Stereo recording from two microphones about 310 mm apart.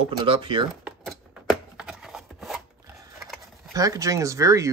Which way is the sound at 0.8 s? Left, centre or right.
Centre.